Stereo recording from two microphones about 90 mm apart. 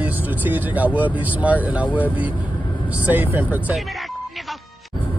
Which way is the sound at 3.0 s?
20° right (ahead or behind).